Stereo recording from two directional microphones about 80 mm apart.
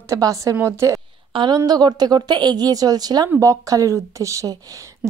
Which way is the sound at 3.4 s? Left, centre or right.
Right.